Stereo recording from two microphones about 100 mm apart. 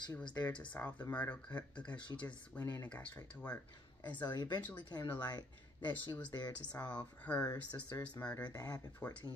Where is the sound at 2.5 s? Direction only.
15° left (ahead or behind).